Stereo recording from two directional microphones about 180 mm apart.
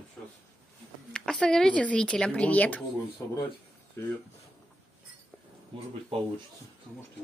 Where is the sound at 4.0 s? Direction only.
15° left (ahead or behind).